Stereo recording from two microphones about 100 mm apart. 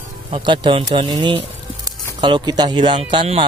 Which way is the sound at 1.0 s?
40° right (ahead or behind).